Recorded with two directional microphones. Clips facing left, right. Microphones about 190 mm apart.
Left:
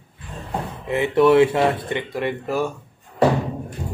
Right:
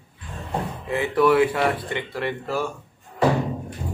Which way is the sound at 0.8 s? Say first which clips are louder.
Left 4 dB; 20° left (ahead or behind).